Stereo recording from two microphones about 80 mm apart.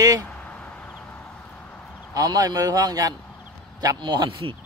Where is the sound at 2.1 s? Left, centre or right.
Right.